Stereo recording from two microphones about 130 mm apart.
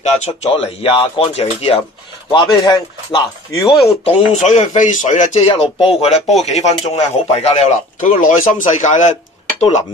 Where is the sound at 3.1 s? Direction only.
40° left (ahead or behind).